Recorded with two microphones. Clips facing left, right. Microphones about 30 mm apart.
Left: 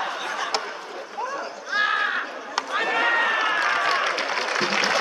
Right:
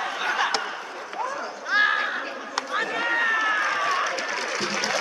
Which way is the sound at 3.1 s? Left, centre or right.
Left.